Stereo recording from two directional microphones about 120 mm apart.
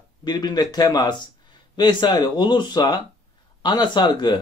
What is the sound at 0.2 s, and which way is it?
Speech, 35° left (ahead or behind).